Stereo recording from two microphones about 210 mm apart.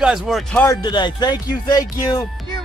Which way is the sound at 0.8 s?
20° left (ahead or behind).